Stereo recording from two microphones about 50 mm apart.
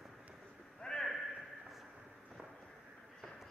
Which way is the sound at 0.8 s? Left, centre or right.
Centre.